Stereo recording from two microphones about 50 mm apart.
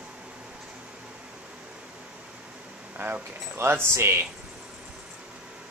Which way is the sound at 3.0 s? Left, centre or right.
Right.